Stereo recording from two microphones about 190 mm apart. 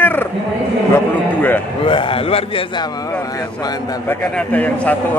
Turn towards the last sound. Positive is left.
turn(degrees=10)  # may be behind; listen again after turning